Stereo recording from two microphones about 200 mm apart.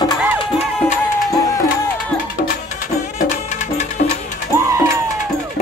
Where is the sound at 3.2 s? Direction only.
35° left (ahead or behind).